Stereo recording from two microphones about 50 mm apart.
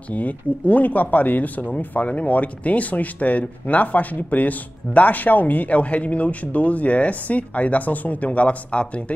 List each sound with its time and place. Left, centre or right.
0.1 s speech: left